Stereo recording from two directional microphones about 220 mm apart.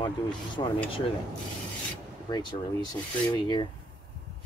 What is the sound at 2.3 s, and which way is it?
Speech, 20° left (ahead or behind).